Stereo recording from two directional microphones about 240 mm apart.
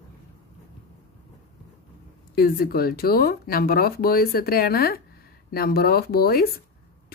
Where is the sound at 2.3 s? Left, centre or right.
Left.